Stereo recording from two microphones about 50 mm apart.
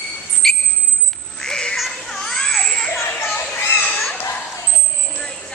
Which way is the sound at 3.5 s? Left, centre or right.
Left.